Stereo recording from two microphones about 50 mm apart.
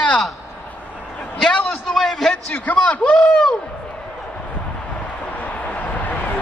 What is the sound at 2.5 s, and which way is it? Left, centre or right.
Speech, left.